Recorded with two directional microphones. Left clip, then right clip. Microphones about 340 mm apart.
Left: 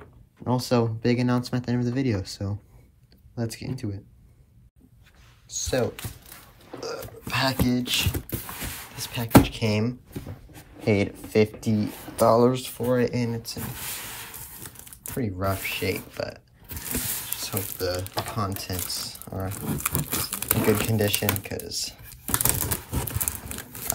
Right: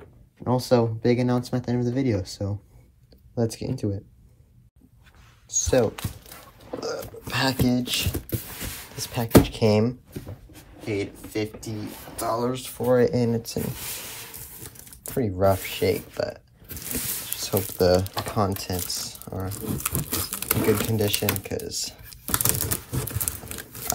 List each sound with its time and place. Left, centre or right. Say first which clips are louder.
0.4 s speech: right 3 dB; centre
5.5 s speech: right 5 dB; centre
10.9 s speech: left 5 dB; centre
15.0 s speech: right 7 dB; centre